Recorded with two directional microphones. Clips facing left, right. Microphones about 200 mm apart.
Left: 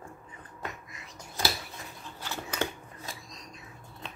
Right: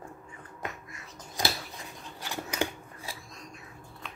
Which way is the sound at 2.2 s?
15° right (ahead or behind).